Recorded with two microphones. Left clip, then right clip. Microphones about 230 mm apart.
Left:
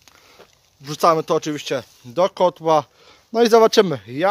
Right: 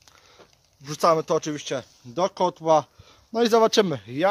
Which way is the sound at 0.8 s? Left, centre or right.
Left.